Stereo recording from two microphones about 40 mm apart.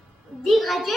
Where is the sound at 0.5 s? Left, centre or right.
Centre.